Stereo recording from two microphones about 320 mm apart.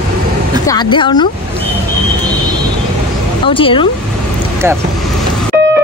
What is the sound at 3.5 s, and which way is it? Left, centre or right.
Speech, centre.